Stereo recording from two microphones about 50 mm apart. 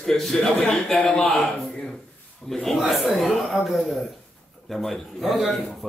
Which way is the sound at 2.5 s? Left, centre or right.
Centre.